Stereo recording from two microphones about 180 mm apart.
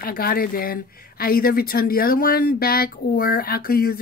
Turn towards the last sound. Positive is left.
turn(degrees=55)  # may be behind; listen again after turning